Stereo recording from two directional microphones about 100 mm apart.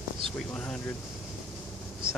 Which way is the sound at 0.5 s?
10° left (ahead or behind).